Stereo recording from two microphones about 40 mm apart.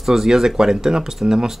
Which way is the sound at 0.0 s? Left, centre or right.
Centre.